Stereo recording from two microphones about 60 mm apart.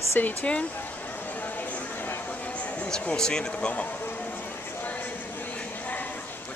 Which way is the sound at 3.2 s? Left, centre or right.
Centre.